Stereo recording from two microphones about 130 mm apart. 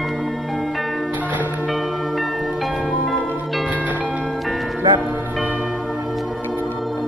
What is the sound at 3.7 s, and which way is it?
Music, 10° right (ahead or behind).